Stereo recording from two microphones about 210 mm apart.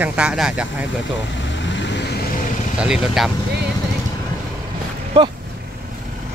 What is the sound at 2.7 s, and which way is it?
Speech, 5° right (ahead or behind).